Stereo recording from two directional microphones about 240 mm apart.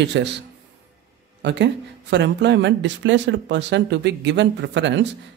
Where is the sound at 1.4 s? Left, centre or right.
Right.